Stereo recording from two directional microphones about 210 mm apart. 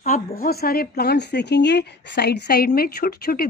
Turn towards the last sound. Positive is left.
turn(degrees=45)  # may be behind; listen again after turning